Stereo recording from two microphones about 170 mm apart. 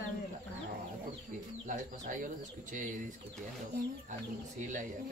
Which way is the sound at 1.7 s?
50° right (ahead or behind).